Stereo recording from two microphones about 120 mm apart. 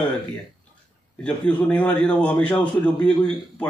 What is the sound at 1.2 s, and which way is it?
A man's voice, 10° left (ahead or behind).